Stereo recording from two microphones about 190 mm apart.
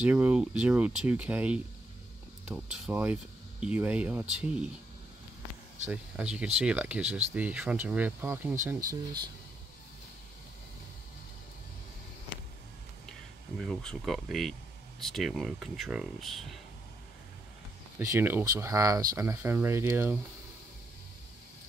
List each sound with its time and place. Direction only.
0.0 s speech: 10° right (ahead or behind)
5.9 s speech: 5° right (ahead or behind)
13.6 s speech: centre (ahead or behind)
17.9 s speech: 15° right (ahead or behind)